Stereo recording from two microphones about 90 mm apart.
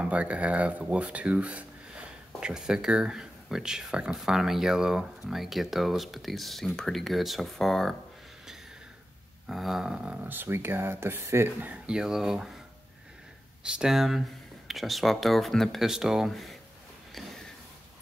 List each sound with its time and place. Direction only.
0.0 s speech: 15° right (ahead or behind); by 7.9 s 5° left (ahead or behind)
9.5 s speech: centre (ahead or behind)
10.2 s speech: 25° right (ahead or behind); by 12.5 s 5° right (ahead or behind)
13.6 s speech: 10° right (ahead or behind)
17.1 s a sound: 5° left (ahead or behind)